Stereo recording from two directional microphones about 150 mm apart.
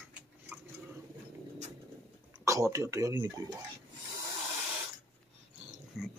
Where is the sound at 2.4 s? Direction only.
20° right (ahead or behind).